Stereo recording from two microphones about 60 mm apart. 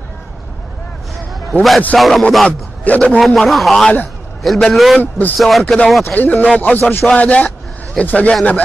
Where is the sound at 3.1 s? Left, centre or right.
Centre.